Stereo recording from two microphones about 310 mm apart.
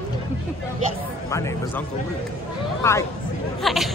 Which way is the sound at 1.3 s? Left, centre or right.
Centre.